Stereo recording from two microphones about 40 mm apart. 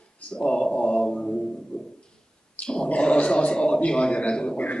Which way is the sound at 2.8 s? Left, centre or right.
Left.